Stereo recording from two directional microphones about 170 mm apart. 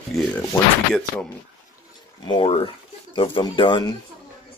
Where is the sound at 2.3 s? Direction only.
35° left (ahead or behind).